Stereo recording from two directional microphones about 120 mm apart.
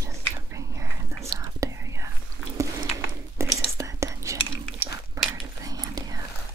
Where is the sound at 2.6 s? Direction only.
25° right (ahead or behind).